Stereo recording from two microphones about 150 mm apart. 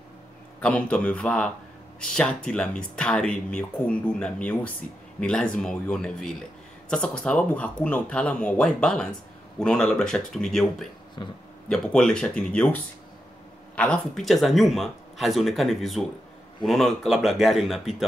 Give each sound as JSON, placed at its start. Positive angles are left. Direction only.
{"t": 0.6, "sound": "speech", "side_deg": 10}